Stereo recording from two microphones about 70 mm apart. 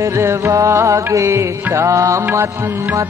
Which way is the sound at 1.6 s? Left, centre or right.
Right.